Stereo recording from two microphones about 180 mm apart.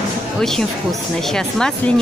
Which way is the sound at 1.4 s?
5° left (ahead or behind).